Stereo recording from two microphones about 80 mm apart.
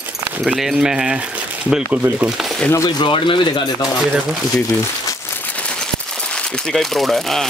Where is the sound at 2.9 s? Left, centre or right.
Left.